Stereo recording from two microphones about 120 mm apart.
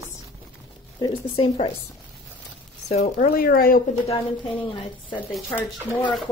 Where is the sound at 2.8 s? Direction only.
65° left (ahead or behind).